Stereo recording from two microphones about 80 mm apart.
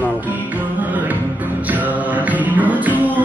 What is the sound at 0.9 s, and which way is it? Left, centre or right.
Music, right.